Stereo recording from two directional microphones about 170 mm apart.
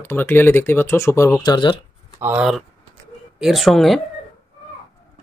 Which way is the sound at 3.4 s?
Centre (ahead or behind).